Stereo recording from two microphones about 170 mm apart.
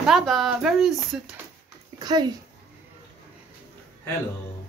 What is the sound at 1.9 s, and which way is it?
Speech, 25° right (ahead or behind).